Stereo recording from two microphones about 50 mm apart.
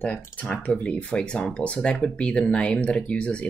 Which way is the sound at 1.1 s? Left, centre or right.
Centre.